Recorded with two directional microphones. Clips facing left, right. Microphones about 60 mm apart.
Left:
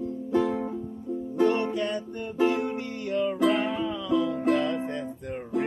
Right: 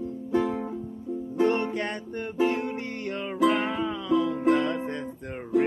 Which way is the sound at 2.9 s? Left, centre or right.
Right.